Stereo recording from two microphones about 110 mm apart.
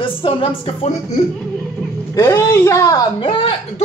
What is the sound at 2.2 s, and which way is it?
Speech, 30° left (ahead or behind).